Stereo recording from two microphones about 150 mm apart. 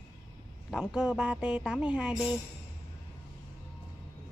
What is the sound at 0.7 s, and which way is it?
Speech, 5° right (ahead or behind).